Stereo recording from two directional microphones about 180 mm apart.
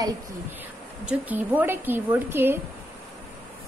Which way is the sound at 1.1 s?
10° right (ahead or behind).